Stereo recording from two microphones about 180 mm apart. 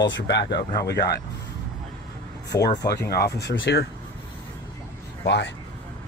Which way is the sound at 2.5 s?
20° left (ahead or behind).